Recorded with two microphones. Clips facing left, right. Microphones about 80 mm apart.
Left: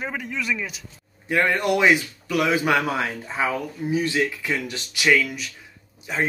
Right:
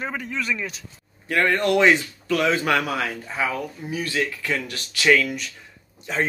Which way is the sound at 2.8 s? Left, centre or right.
Left.